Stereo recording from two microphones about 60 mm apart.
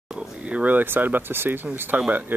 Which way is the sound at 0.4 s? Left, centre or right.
Right.